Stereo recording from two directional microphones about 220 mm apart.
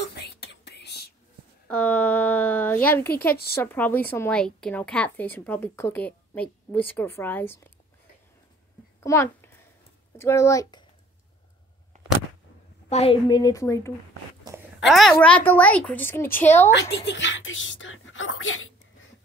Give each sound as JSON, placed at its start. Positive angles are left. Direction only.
{"t": 0.1, "sound": "whispering", "side_deg": 50}
{"t": 1.7, "sound": "a sound", "side_deg": 5}
{"t": 3.6, "sound": "a woman's voice", "side_deg": 10}
{"t": 9.0, "sound": "a child's voice", "side_deg": 15}
{"t": 12.9, "sound": "a woman's voice", "side_deg": 25}
{"t": 14.5, "sound": "a sound", "side_deg": -15}
{"t": 14.9, "sound": "a woman's voice", "side_deg": 0}
{"t": 16.7, "sound": "speech", "side_deg": 55}